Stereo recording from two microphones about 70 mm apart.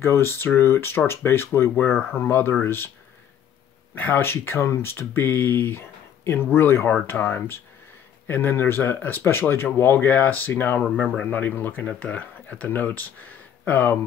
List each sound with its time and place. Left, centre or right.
0.0 s speech: left
3.9 s speech: left